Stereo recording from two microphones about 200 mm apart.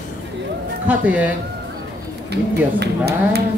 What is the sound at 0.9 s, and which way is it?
Speech, 5° right (ahead or behind).